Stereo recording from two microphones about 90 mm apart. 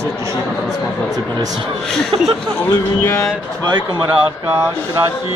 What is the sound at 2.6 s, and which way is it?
Speech, 35° left (ahead or behind).